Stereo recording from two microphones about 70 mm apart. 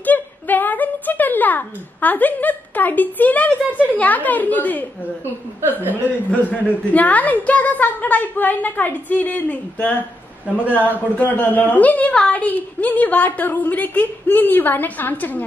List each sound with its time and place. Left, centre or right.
0.0 s a sound: left
3.8 s a woman's voice: left
6.0 s a woman's voice: left
10.6 s speech: right
10.9 s a woman's voice: left